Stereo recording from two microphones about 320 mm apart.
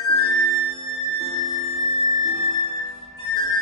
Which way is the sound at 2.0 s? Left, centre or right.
Centre.